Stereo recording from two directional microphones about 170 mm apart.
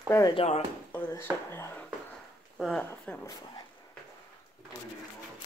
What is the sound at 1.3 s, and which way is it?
Speech, 10° right (ahead or behind).